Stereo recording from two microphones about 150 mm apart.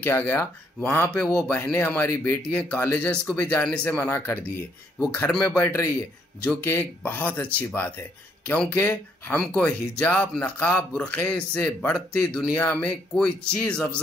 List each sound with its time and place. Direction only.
0.0 s speech: 15° left (ahead or behind)